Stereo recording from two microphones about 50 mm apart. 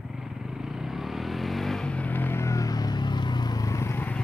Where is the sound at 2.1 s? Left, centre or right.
Left.